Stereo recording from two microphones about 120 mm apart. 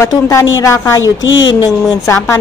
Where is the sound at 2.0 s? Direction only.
25° left (ahead or behind).